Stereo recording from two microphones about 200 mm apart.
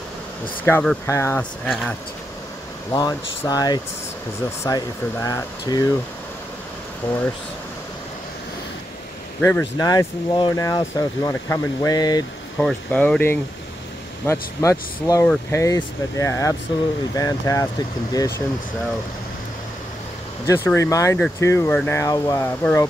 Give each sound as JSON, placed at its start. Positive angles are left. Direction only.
{"t": 0.7, "sound": "speech", "side_deg": 10}
{"t": 2.9, "sound": "speech", "side_deg": 20}
{"t": 7.0, "sound": "speech", "side_deg": 10}
{"t": 9.4, "sound": "speech", "side_deg": 10}
{"t": 12.5, "sound": "speech", "side_deg": 5}
{"t": 20.4, "sound": "speech", "side_deg": 15}